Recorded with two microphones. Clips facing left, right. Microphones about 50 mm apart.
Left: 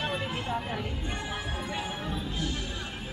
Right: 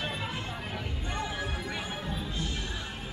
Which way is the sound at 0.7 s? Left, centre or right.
Centre.